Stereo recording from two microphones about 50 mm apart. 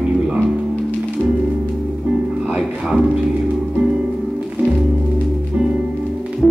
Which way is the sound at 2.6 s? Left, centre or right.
Centre.